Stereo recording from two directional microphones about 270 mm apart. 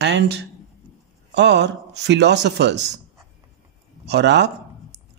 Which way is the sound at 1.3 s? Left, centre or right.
Right.